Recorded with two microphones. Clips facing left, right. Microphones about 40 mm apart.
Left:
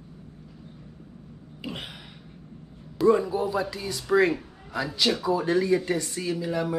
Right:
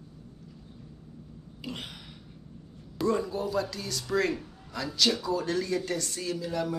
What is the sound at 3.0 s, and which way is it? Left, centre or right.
A man's voice, centre.